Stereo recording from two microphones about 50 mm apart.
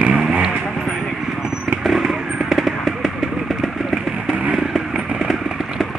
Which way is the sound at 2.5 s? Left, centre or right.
Centre.